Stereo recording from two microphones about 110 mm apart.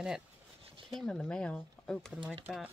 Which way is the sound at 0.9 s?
5° left (ahead or behind).